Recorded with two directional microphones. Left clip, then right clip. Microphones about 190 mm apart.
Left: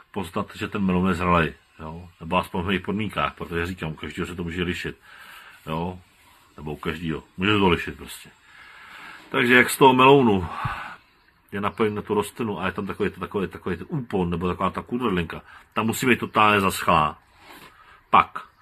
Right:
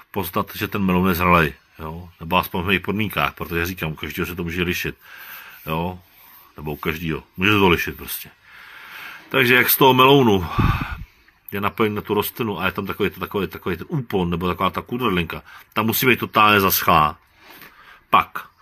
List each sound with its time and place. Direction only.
0.1 s speech: 65° right (ahead or behind); by 17.1 s 50° right (ahead or behind)
18.1 s speech: 50° right (ahead or behind)